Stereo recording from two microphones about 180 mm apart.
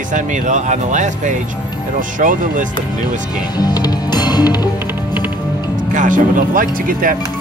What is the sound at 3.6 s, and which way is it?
Music, 20° left (ahead or behind).